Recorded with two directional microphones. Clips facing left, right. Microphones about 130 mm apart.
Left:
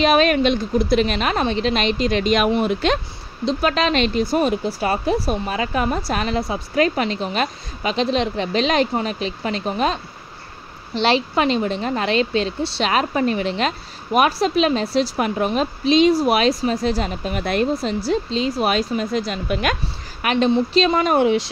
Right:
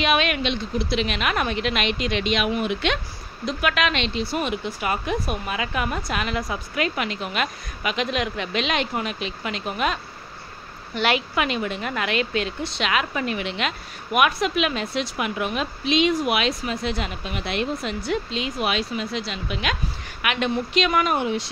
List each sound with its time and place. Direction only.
0.0 s a woman's voice: 40° left (ahead or behind)
11.0 s a woman's voice: 30° left (ahead or behind)
21.2 s speech: 90° left